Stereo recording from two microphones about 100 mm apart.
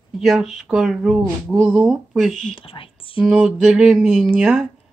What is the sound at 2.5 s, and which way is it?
Speech, 65° left (ahead or behind).